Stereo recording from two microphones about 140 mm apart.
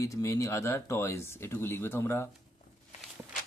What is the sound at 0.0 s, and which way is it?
Speech, 20° left (ahead or behind).